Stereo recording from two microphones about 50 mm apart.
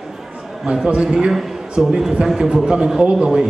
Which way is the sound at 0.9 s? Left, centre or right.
Centre.